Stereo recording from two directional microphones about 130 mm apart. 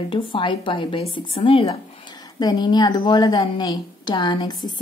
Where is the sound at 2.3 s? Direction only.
35° left (ahead or behind).